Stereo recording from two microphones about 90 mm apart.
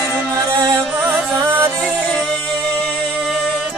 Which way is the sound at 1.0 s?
25° right (ahead or behind).